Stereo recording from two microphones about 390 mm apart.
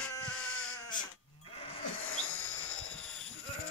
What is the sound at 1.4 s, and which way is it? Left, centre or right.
Sheep, centre.